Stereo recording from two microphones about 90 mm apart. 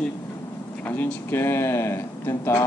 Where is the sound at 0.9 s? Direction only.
25° left (ahead or behind).